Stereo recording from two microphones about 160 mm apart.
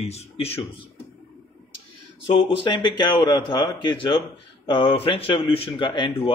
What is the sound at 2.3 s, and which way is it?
Speech, 35° left (ahead or behind).